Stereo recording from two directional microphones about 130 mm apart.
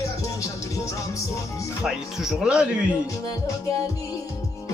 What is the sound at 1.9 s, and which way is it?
Speech, 5° right (ahead or behind).